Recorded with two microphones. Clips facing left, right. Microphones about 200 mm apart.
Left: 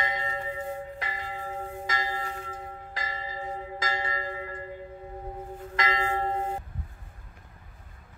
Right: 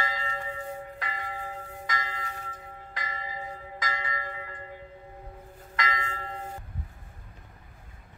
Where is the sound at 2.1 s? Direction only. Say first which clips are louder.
Left 5 dB; 40° left (ahead or behind).